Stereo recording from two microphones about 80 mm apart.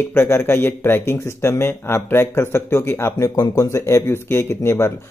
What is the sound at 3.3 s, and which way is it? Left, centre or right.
Speech, left.